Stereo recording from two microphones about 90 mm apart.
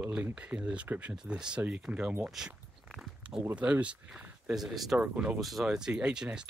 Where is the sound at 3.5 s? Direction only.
15° right (ahead or behind).